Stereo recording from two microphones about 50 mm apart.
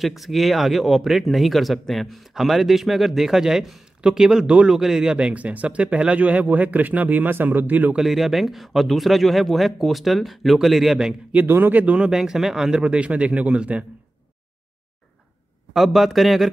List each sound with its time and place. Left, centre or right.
0.0 s speech: centre
5.1 s speech: right
7.9 s speech: centre
11.4 s speech: right
11.8 s speech: right
12.1 s speech: centre
12.7 s speech: centre
15.7 s speech: centre